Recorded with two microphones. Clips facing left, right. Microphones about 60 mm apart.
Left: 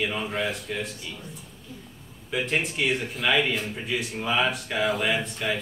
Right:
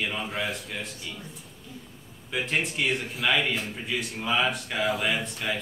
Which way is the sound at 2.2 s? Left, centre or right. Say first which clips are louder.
Left 2 dB; centre.